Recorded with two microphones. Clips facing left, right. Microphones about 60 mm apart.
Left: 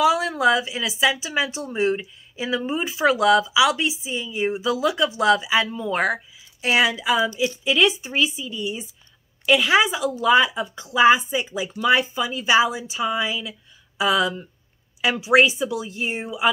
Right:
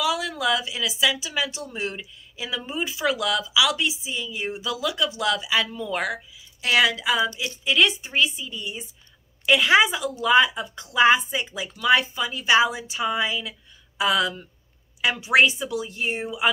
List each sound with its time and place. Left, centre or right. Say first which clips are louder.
0.2 s a sound: left 5 dB; left
0.5 s a woman's voice: left 4 dB; left
3.3 s speech: left 6 dB; centre
3.6 s speech: left 4 dB; centre
3.9 s a woman's voice: left 3 dB; left
5.4 s speech: left 3 dB; centre
5.9 s speech: left 5 dB; left
6.6 s speech: left 1 dB; centre
7.6 s a woman's voice: even; centre